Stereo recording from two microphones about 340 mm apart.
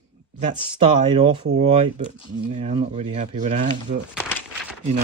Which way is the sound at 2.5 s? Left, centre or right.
Centre.